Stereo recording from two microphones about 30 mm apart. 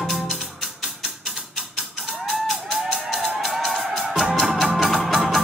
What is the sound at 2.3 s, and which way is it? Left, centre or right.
Music, centre.